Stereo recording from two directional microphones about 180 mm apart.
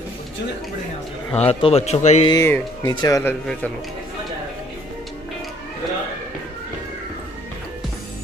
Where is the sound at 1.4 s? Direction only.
35° left (ahead or behind).